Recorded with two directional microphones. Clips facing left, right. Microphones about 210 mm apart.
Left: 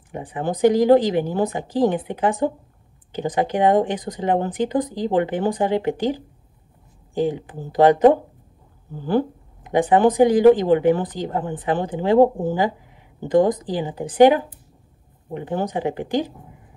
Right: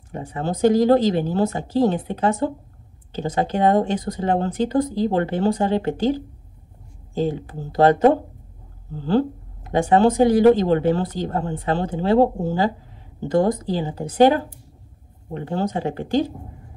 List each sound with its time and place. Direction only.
0.1 s speech: 15° left (ahead or behind)